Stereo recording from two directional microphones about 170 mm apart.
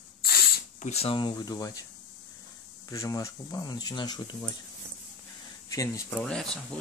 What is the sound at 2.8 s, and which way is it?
Speech, 20° left (ahead or behind).